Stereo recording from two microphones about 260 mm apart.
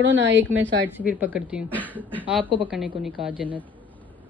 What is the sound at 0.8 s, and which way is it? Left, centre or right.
A man's voice, centre.